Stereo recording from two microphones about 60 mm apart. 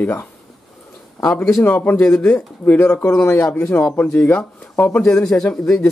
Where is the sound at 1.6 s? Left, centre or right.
Left.